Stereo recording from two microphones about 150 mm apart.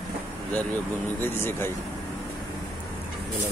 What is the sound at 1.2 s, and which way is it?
Speech, 15° left (ahead or behind).